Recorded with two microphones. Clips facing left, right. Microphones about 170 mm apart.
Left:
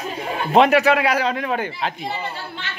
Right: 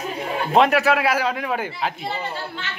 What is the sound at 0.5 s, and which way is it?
A man's voice, centre (ahead or behind).